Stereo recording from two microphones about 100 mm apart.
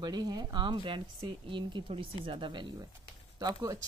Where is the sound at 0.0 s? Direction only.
45° right (ahead or behind).